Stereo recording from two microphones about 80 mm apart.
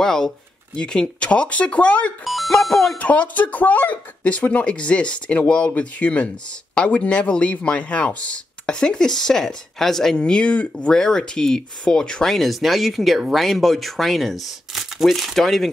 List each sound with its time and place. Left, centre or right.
0.0 s speech: centre
2.2 s music: centre
2.5 s speech: centre
3.0 s speech: centre